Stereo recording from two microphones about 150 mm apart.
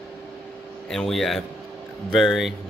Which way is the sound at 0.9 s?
5° left (ahead or behind).